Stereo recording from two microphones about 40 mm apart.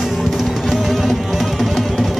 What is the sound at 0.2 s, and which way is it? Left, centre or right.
Music, centre.